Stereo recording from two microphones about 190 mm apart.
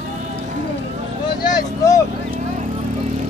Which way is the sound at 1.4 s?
20° left (ahead or behind).